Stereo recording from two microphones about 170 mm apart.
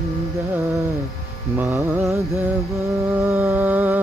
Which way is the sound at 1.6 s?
15° right (ahead or behind).